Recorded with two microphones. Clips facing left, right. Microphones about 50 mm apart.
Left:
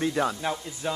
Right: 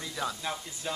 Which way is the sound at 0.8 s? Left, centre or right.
Left.